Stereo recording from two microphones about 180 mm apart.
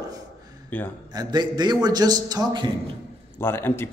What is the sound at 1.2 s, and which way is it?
Speech, 25° right (ahead or behind).